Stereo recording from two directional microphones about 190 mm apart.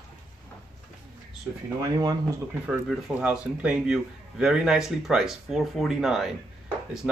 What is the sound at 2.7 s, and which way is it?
A man's voice, 5° right (ahead or behind).